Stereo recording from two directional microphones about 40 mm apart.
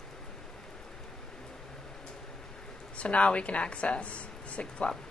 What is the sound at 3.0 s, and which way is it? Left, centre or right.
A woman's voice, left.